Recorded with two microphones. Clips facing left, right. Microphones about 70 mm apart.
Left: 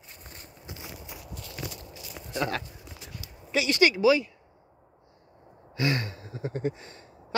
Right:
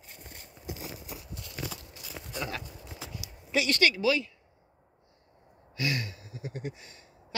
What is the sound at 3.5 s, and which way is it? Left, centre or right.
Speech, centre.